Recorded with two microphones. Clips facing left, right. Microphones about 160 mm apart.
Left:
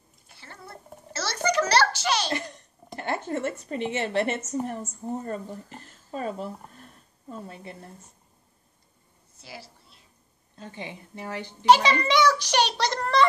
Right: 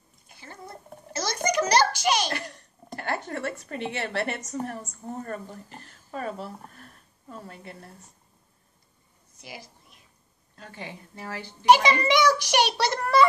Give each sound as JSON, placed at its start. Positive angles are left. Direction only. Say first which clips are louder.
{"t": 0.3, "sound": "a sound", "louder": "right 2 dB", "side_deg": -15}
{"t": 2.3, "sound": "cough", "louder": "left 3 dB", "side_deg": 20}
{"t": 3.3, "sound": "a woman's voice", "louder": "left 3 dB", "side_deg": 20}
{"t": 9.4, "sound": "a woman's voice", "louder": "even", "side_deg": -15}
{"t": 10.6, "sound": "a woman's voice", "louder": "left 2 dB", "side_deg": 20}
{"t": 11.6, "sound": "a child's voice", "louder": "even", "side_deg": -15}